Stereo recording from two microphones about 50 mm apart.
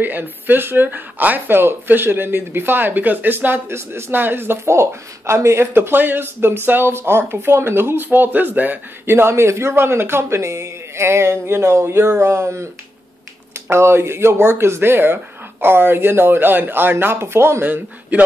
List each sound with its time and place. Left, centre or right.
0.0 s speech: right
3.6 s speech: right
4.7 s speech: right
5.8 s speech: right
9.0 s speech: right
13.7 s speech: right
18.1 s speech: right